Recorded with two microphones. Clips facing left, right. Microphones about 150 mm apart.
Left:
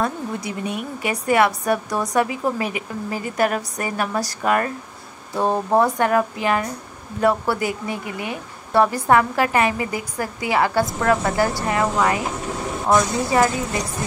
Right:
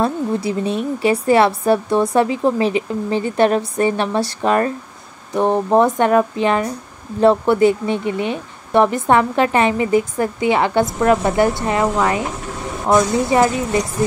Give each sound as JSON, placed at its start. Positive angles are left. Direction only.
{"t": 0.0, "sound": "a woman's voice", "side_deg": -30}